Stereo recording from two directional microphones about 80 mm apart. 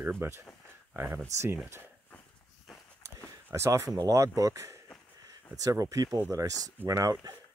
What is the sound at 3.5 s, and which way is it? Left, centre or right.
Speech, right.